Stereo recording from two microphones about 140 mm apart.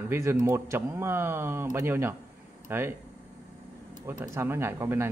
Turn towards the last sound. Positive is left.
turn(degrees=-20)  # may be behind; listen again after turning